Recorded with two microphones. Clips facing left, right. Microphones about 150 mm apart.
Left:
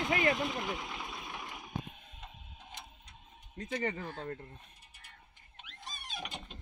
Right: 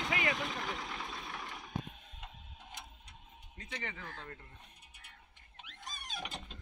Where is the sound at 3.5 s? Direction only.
45° left (ahead or behind).